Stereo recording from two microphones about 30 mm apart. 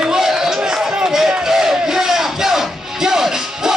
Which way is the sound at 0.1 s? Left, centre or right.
Centre.